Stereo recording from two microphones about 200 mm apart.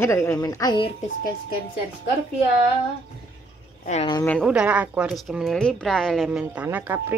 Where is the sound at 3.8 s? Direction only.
35° left (ahead or behind).